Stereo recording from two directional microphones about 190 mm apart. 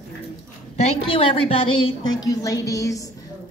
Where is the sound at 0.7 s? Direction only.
30° left (ahead or behind).